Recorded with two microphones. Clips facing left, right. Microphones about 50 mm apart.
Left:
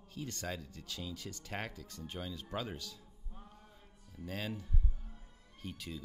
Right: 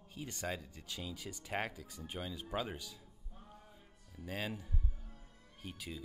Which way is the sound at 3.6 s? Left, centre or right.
Centre.